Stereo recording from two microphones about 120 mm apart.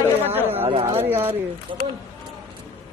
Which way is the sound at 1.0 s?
20° right (ahead or behind).